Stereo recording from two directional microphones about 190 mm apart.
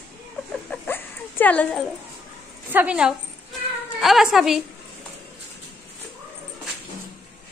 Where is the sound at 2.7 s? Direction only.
10° right (ahead or behind).